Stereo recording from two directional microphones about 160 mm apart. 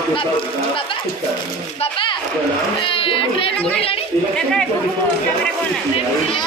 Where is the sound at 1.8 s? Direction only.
35° left (ahead or behind).